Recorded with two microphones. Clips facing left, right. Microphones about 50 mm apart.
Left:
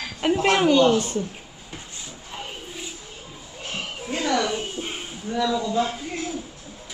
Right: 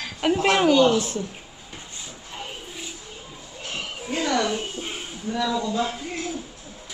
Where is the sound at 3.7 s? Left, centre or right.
Centre.